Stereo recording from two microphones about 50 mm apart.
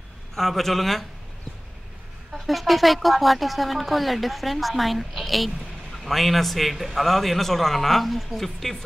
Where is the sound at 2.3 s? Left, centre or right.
Centre.